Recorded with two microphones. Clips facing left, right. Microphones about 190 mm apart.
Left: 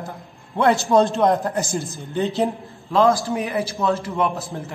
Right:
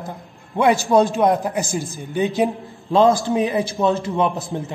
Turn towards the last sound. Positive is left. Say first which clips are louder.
# right 2 dB
turn(degrees=-20)  # may be behind; listen again after turning